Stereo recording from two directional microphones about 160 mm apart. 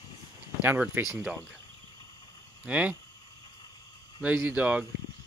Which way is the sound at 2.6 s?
10° right (ahead or behind).